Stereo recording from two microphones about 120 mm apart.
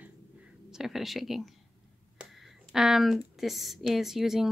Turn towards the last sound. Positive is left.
turn(degrees=-5)  # may be behind; listen again after turning